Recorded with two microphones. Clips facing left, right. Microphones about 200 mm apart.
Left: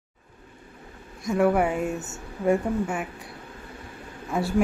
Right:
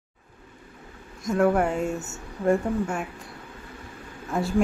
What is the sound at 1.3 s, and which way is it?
Speech, 5° left (ahead or behind).